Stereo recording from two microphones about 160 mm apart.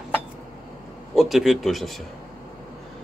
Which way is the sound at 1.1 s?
Centre (ahead or behind).